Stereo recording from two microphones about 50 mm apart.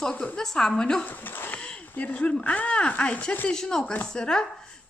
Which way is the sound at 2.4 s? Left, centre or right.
Left.